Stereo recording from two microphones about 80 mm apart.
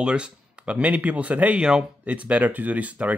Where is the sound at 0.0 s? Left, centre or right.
Centre.